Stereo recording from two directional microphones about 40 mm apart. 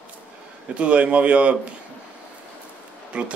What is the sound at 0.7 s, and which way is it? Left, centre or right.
Speech, right.